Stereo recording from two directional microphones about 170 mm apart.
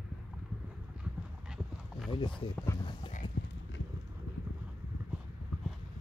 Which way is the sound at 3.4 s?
65° left (ahead or behind).